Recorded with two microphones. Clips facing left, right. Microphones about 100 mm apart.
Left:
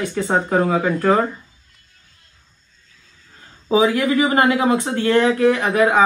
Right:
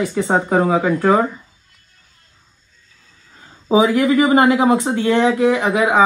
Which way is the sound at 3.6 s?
25° right (ahead or behind).